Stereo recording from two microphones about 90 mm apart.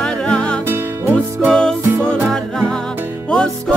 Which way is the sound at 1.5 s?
10° left (ahead or behind).